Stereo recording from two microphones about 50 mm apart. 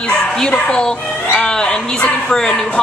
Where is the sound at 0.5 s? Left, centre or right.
Centre.